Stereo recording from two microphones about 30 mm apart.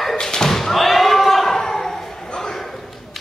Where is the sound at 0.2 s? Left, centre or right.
Centre.